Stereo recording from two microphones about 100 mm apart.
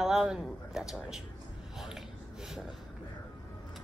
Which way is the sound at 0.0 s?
5° right (ahead or behind).